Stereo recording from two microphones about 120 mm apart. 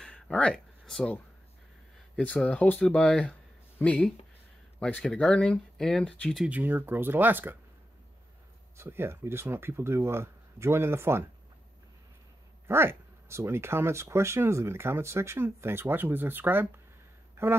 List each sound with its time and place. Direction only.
0.0 s a sound: 10° left (ahead or behind)
2.1 s speech: 10° left (ahead or behind)
6.4 s speech: 15° right (ahead or behind)
8.7 s speech: 20° right (ahead or behind)
12.6 s speech: 20° right (ahead or behind)